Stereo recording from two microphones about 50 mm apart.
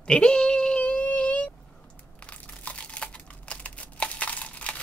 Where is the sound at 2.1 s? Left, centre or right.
Left.